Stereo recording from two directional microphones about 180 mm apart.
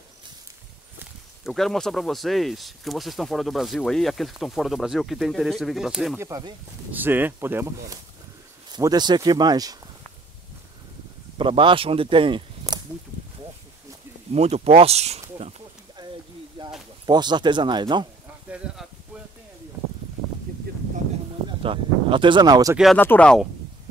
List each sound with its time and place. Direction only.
0.9 s speech: centre (ahead or behind)
6.1 s speech: 15° right (ahead or behind)
11.3 s speech: 30° right (ahead or behind)
14.3 s speech: 35° right (ahead or behind)
16.0 s a sound: 25° right (ahead or behind)
17.0 s speech: 25° right (ahead or behind)
20.5 s a sound: 55° right (ahead or behind)
21.6 s speech: 25° right (ahead or behind)
22.9 s speech: 10° left (ahead or behind)